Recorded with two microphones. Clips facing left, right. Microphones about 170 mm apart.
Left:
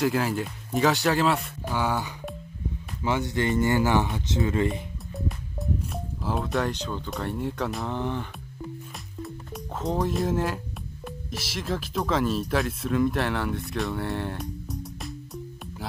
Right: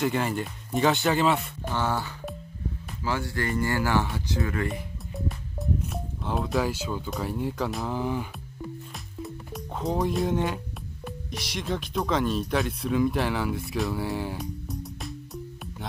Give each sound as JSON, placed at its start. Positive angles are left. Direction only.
{"t": 0.0, "sound": "speech", "side_deg": 0}
{"t": 1.8, "sound": "speech", "side_deg": 10}
{"t": 6.2, "sound": "speech", "side_deg": 0}
{"t": 9.2, "sound": "music", "side_deg": 0}
{"t": 11.1, "sound": "speech", "side_deg": 0}